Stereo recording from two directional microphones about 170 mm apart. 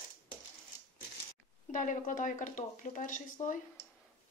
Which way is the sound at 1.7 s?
50° left (ahead or behind).